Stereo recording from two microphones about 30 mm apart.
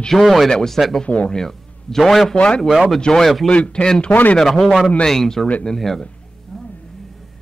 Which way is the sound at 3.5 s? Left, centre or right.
Left.